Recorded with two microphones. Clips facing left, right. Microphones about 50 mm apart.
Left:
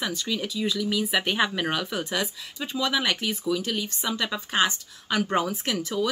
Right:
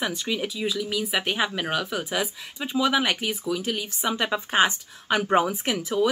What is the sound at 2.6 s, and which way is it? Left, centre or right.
Speech, centre.